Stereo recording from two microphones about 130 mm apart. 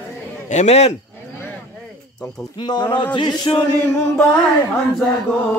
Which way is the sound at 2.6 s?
35° left (ahead or behind).